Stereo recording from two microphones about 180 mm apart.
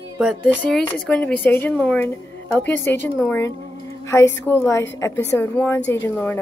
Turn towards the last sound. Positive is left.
turn(degrees=15)  # may be behind; listen again after turning